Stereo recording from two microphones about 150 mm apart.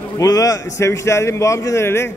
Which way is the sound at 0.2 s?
25° left (ahead or behind).